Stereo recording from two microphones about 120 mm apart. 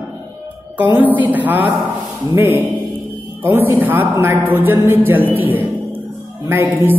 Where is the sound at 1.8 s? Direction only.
20° right (ahead or behind).